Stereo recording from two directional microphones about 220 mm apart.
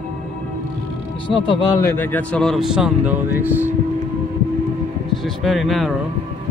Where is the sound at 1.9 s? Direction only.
10° left (ahead or behind); by 3.7 s 10° right (ahead or behind).